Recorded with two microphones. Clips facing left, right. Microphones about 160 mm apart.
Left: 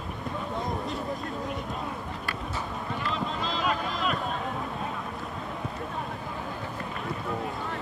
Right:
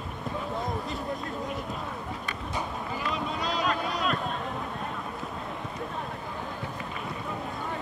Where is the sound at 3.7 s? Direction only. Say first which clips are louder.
Left 2 dB; 5° left (ahead or behind).